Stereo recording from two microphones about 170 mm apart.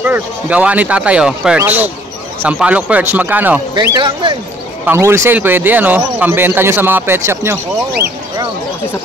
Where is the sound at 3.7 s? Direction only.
25° right (ahead or behind).